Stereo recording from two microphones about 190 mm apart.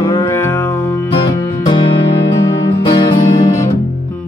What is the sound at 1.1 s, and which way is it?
Music, 25° left (ahead or behind).